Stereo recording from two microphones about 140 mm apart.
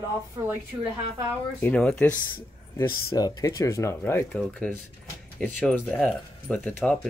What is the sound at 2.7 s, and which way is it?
Speech, 25° left (ahead or behind).